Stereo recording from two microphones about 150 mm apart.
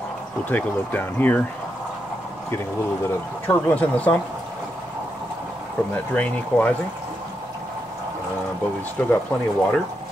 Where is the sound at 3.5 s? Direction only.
10° left (ahead or behind).